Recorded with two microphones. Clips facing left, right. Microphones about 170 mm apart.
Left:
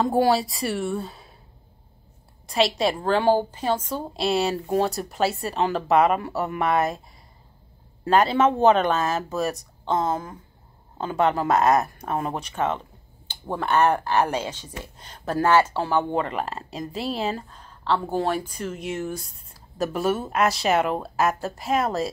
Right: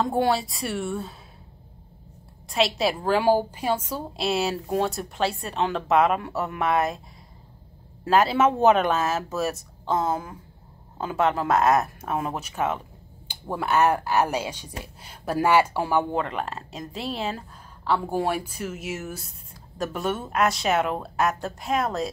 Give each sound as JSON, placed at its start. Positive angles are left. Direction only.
{"t": 0.0, "sound": "a woman's voice", "side_deg": 0}
{"t": 2.4, "sound": "a woman's voice", "side_deg": 0}
{"t": 8.0, "sound": "a woman's voice", "side_deg": -5}
{"t": 16.1, "sound": "a woman's voice", "side_deg": 0}